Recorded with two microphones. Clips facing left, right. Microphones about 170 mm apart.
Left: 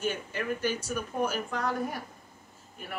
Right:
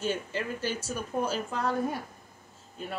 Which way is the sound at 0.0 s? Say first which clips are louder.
Right 1 dB; 30° right (ahead or behind).